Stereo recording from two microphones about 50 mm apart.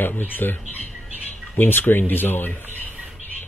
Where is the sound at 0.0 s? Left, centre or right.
Left.